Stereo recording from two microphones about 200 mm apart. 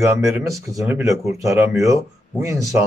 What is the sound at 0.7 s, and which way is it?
Speech, 10° right (ahead or behind).